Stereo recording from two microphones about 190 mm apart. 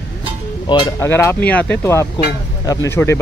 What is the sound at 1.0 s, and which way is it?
Speech, 10° left (ahead or behind).